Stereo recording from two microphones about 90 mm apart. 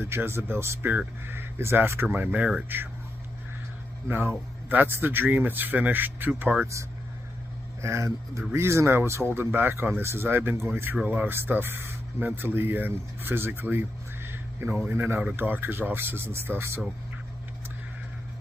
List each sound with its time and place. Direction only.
0.0 s speech: 25° right (ahead or behind)
4.1 s speech: 25° right (ahead or behind)
7.8 s speech: 35° right (ahead or behind)